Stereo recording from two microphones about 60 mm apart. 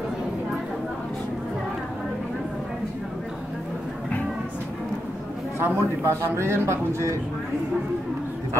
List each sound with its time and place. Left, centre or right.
5.6 s a man's voice: right